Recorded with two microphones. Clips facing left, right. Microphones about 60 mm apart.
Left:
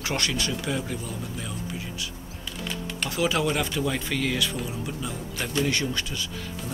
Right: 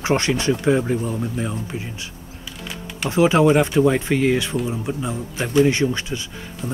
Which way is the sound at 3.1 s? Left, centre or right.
Right.